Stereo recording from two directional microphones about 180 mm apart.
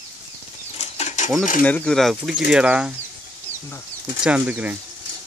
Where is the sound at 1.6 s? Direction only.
5° left (ahead or behind).